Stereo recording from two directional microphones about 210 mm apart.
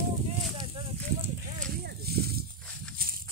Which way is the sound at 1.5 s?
45° right (ahead or behind).